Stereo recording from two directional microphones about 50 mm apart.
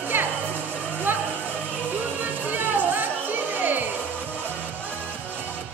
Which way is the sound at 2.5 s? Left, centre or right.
Right.